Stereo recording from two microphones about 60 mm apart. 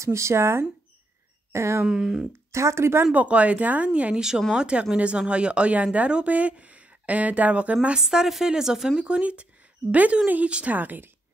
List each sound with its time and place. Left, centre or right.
0.0 s speech: right
1.9 s speech: centre
2.5 s speech: right
3.1 s speech: right
8.0 s speech: centre; by 11.1 s right